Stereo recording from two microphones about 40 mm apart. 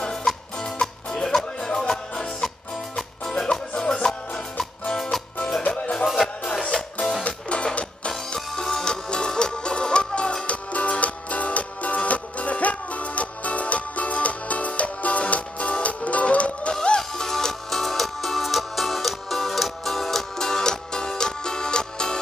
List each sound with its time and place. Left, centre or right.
0.0 s music: centre
3.4 s music: left
6.6 s music: left
8.5 s music: centre; by 16.7 s left
17.1 s music: centre